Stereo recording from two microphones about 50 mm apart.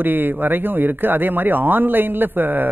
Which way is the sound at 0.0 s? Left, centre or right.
Right.